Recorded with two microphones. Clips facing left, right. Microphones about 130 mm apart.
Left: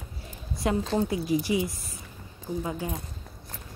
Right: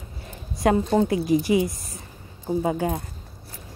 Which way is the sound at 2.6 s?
70° right (ahead or behind).